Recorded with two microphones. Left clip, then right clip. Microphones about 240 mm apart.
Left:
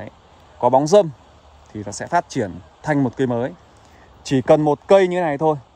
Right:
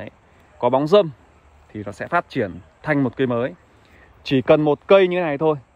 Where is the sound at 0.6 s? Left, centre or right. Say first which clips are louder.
Left 2 dB; centre.